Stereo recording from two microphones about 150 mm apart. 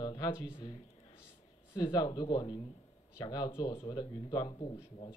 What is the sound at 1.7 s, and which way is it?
Speech, 30° left (ahead or behind).